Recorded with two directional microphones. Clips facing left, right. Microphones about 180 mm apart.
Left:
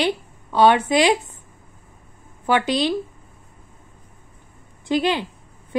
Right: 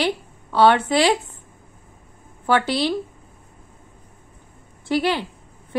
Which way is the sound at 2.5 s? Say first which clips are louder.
Even; 15° left (ahead or behind).